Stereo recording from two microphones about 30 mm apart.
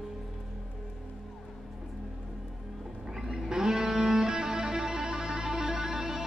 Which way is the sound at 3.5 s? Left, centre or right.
Right.